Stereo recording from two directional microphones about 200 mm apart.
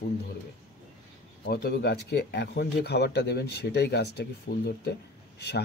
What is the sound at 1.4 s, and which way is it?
Speech, 55° left (ahead or behind).